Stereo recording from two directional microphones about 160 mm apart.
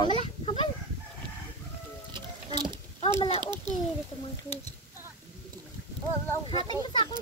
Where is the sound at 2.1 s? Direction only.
30° right (ahead or behind).